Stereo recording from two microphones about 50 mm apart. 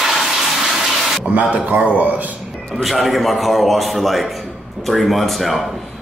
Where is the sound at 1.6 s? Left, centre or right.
Right.